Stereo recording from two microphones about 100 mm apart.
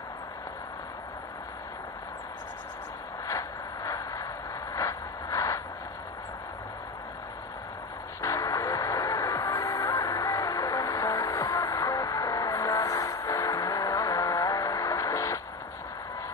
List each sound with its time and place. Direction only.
3.3 s vehicle: 35° left (ahead or behind)
4.7 s a sound: 35° left (ahead or behind)
8.2 s music: 35° left (ahead or behind)